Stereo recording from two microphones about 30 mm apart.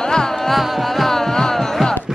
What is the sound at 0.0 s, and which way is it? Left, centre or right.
Carnatic music, left.